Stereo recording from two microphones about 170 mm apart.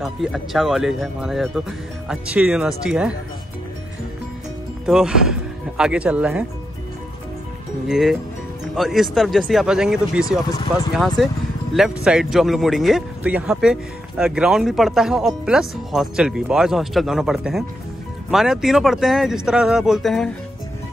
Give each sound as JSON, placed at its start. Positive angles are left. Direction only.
{"t": 0.0, "sound": "speech", "side_deg": 0}
{"t": 4.8, "sound": "speech", "side_deg": -5}
{"t": 7.9, "sound": "speech", "side_deg": 0}
{"t": 10.4, "sound": "speech", "side_deg": 25}
{"t": 11.2, "sound": "speech", "side_deg": 0}